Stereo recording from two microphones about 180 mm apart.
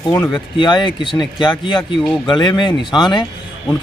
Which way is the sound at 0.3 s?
25° left (ahead or behind).